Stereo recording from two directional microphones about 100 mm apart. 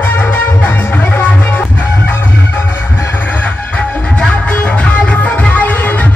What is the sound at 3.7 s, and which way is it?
Music, 10° left (ahead or behind).